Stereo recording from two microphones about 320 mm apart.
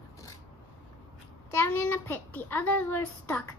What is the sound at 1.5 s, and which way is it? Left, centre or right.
A child's voice, centre.